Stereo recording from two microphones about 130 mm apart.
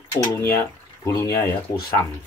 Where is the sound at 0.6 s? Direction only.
20° left (ahead or behind).